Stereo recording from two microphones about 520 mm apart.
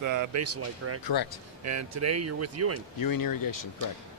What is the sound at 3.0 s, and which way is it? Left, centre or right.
Speech, left.